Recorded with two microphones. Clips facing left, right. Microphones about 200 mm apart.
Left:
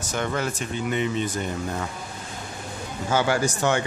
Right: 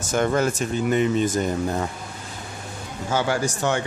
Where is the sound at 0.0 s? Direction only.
45° right (ahead or behind).